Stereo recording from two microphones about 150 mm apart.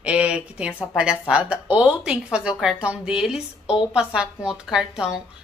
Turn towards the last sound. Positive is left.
turn(degrees=-5)  # may be behind; listen again after turning